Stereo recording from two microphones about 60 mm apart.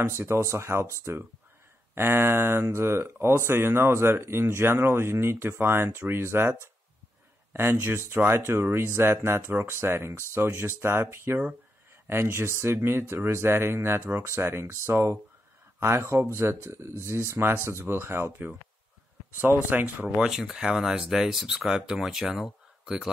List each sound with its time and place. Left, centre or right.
0.0 s speech: right
2.0 s speech: right
7.8 s speech: right
20.2 s speech: centre